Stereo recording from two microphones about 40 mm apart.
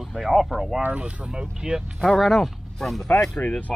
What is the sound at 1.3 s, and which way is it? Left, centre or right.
Speech, centre.